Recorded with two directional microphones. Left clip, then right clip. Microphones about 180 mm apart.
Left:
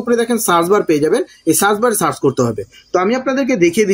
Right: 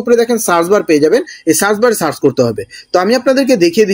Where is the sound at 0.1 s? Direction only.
15° right (ahead or behind).